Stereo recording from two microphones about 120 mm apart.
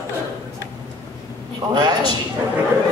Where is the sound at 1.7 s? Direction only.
40° right (ahead or behind).